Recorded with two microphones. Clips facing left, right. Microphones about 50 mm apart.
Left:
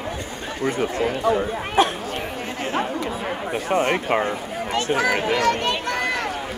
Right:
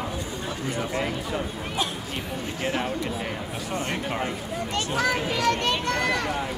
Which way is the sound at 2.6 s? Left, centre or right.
Left.